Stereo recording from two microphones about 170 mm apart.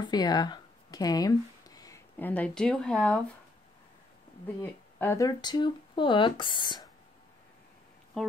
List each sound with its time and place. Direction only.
0.0 s a sound: 25° left (ahead or behind)
2.1 s speech: 10° left (ahead or behind)
4.6 s speech: 15° left (ahead or behind)